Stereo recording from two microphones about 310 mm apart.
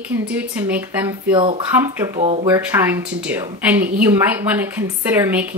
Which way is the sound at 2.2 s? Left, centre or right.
Centre.